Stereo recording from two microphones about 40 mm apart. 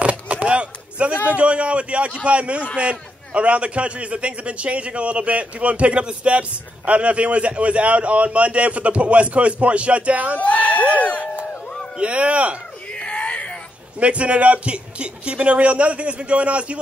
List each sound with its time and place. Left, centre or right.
0.0 s chop: right
1.3 s a man's voice: right
10.4 s speech: left
12.0 s a man's voice: right
12.9 s a sound: left
13.9 s a man's voice: right